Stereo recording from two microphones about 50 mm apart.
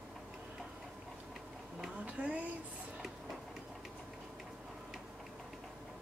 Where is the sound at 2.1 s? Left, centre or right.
Right.